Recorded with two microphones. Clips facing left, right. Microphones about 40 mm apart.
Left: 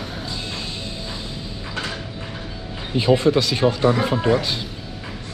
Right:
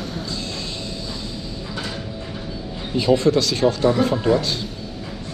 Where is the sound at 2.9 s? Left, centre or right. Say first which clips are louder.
Even; left.